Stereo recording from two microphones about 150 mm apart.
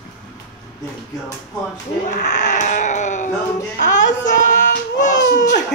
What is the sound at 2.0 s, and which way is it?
Speech, 55° left (ahead or behind).